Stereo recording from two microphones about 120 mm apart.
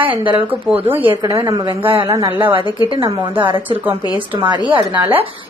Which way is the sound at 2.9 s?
45° right (ahead or behind).